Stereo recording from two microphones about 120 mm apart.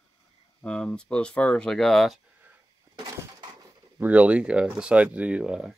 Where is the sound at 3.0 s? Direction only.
35° right (ahead or behind).